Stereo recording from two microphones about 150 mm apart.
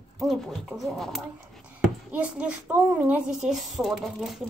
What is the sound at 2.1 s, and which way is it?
Speech, 10° right (ahead or behind).